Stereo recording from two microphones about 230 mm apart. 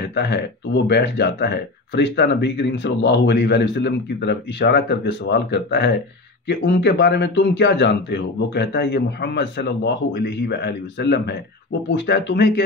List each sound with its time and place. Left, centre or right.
0.0 s speech: left